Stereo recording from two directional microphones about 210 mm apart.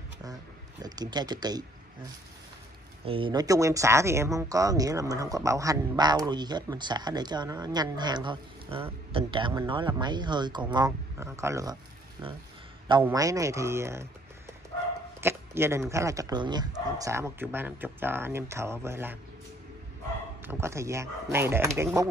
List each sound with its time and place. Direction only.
0.8 s speech: 20° right (ahead or behind)
3.1 s speech: 25° right (ahead or behind)
13.0 s speech: 15° right (ahead or behind)
15.1 s speech: 10° right (ahead or behind)
20.4 s speech: 15° right (ahead or behind)